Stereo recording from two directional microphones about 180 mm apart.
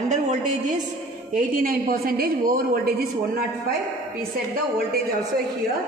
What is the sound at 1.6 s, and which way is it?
A man's voice, 55° right (ahead or behind).